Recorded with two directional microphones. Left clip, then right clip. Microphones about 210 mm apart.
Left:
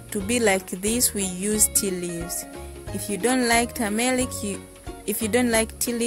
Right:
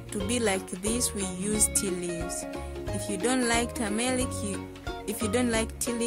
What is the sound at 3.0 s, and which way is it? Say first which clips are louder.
Speech: left 5 dB; 15° left (ahead or behind).